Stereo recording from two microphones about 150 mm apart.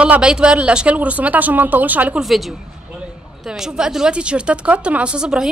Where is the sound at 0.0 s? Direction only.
5° right (ahead or behind).